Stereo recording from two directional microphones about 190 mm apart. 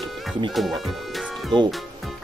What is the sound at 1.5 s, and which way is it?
Speech, 25° right (ahead or behind).